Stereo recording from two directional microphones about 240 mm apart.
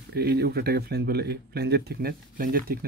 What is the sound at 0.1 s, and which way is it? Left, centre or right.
Speech, right.